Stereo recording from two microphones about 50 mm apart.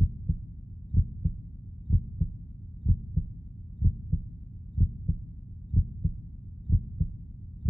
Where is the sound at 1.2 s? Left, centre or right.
Centre.